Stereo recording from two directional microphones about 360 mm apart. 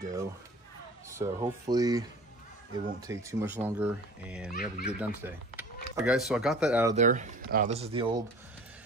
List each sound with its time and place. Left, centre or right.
0.0 s a sound: centre
1.1 s speech: centre
4.5 s speech: left
4.9 s speech: centre
7.0 s speech: centre